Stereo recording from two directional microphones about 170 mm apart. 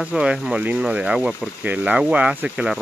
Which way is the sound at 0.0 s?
5° right (ahead or behind).